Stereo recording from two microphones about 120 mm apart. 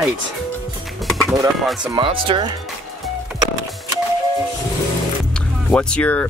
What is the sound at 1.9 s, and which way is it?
Speech, 45° right (ahead or behind).